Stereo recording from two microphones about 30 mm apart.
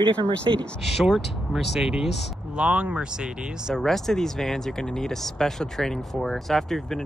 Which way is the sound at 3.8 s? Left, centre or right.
Centre.